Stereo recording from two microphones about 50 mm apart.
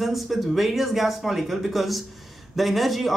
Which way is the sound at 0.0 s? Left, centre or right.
Centre.